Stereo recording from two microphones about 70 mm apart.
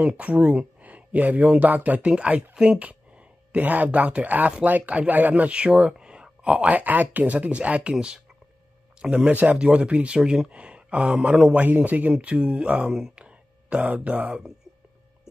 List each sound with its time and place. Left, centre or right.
0.0 s speech: centre
2.8 s speech: centre